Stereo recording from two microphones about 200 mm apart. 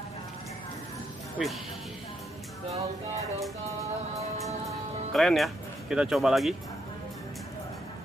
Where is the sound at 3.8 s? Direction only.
15° right (ahead or behind).